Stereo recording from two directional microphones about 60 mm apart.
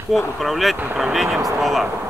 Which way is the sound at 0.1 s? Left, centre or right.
Centre.